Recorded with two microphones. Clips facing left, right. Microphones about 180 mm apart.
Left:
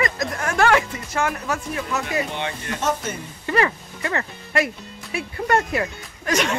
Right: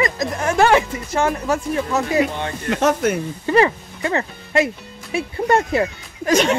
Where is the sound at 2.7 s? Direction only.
75° right (ahead or behind).